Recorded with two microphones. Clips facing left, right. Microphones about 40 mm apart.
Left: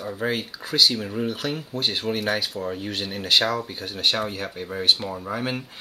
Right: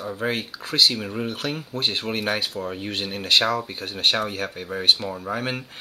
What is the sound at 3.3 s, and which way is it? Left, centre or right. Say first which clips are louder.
Speech: right 1 dB; centre.